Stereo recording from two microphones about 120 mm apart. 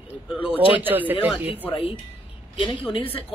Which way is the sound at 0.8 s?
15° right (ahead or behind).